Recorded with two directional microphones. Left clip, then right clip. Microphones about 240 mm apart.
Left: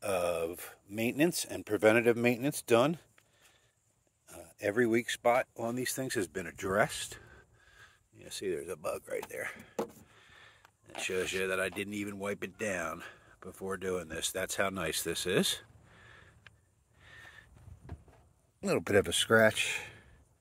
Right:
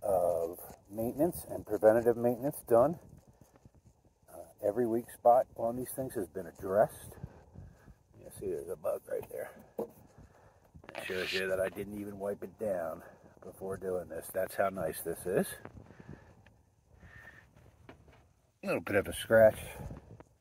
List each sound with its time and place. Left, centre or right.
0.0 s a sound: left
1.5 s speech: left
4.3 s speech: left
8.5 s speech: left
11.1 s speech: left
18.6 s speech: left